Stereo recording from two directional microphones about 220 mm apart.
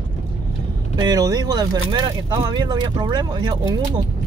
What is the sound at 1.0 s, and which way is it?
Speech, 15° right (ahead or behind).